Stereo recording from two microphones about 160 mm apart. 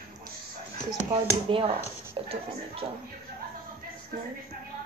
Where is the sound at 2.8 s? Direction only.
45° right (ahead or behind).